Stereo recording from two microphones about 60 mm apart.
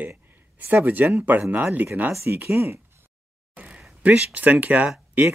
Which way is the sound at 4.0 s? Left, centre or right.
Right.